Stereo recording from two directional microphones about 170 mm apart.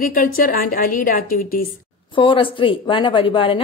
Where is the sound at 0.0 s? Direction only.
55° left (ahead or behind).